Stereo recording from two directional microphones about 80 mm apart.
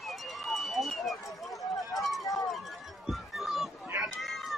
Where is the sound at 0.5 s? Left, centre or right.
Centre.